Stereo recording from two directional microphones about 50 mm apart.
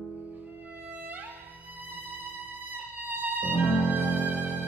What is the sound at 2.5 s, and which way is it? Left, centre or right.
Violin, right.